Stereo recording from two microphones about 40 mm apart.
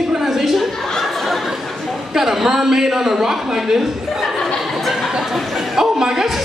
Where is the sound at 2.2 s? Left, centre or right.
Centre.